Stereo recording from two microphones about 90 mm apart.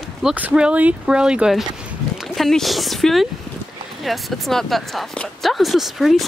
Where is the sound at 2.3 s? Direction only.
Centre (ahead or behind).